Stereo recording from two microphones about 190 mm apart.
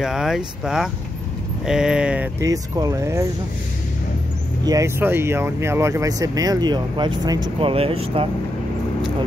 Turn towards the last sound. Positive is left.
turn(degrees=-30)  # may be behind; listen again after turning